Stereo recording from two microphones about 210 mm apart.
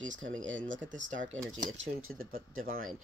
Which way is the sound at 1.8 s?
65° right (ahead or behind).